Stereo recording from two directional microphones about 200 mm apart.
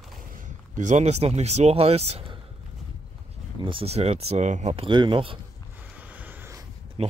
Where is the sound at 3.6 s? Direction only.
30° right (ahead or behind).